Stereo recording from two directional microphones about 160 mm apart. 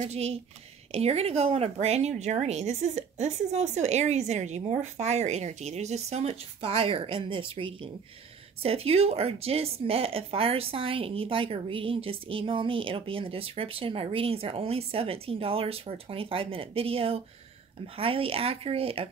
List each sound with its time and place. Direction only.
0.0 s speech: 40° right (ahead or behind)